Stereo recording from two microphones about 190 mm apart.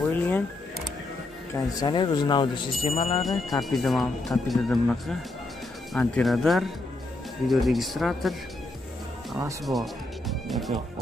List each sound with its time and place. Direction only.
0.0 s music: 10° left (ahead or behind)
1.5 s speech: 20° left (ahead or behind)
3.6 s speech: centre (ahead or behind)
9.7 s music: centre (ahead or behind)